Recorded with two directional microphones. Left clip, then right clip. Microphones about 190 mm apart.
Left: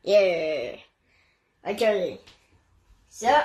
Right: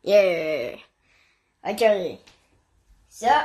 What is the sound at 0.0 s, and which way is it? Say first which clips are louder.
A woman's voice: right 2 dB; 45° right (ahead or behind).